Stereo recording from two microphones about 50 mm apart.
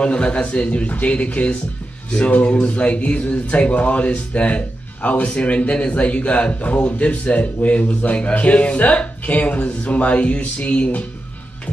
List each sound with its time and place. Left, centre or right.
0.0 s speech: left